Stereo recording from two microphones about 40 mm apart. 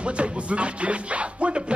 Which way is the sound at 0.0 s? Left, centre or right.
Right.